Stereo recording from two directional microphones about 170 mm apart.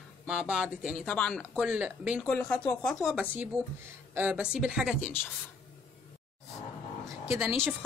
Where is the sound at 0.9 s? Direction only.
5° left (ahead or behind).